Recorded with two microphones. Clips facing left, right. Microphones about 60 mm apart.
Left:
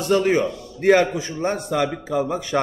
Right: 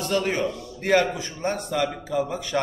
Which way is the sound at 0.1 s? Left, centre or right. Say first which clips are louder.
Left 7 dB; left.